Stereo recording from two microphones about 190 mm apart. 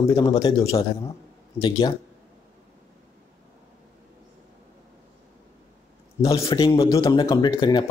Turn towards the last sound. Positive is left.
turn(degrees=25)  # may be behind; listen again after turning